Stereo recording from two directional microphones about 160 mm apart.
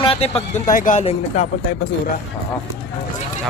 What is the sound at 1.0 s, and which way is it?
Speech, 45° left (ahead or behind).